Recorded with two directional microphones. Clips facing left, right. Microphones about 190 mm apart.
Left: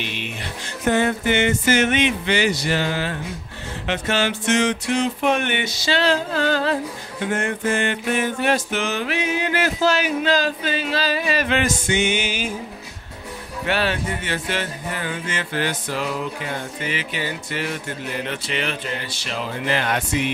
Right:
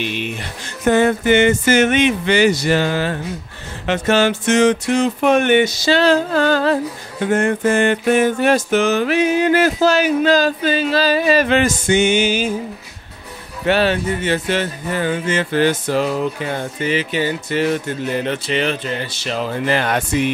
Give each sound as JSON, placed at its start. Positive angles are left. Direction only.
{"t": 0.0, "sound": "music", "side_deg": -50}
{"t": 13.7, "sound": "speech", "side_deg": -25}
{"t": 19.6, "sound": "music", "side_deg": -45}